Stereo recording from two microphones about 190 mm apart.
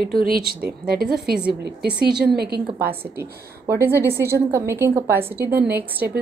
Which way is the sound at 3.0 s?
15° right (ahead or behind).